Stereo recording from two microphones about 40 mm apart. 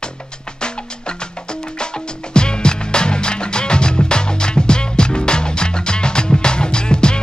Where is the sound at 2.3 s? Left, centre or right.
Left.